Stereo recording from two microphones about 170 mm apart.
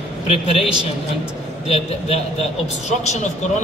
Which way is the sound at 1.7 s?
40° left (ahead or behind).